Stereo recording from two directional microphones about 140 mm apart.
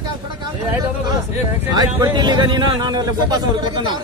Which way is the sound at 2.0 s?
30° right (ahead or behind).